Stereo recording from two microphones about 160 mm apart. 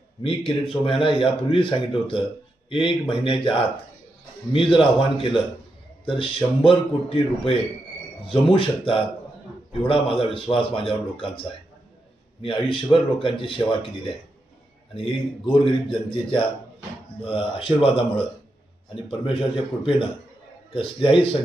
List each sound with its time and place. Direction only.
0.2 s speech: 35° left (ahead or behind)
19.3 s speech: 35° left (ahead or behind)